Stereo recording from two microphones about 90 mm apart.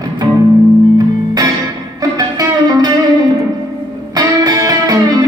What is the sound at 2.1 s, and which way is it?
Music, 45° right (ahead or behind).